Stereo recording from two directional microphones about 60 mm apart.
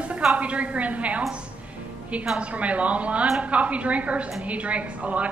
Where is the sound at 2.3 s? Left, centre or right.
Right.